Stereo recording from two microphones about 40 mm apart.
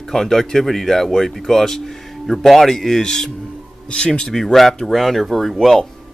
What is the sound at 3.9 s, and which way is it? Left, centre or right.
Speech, left.